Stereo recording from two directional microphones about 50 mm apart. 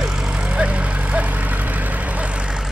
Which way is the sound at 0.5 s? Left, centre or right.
Right.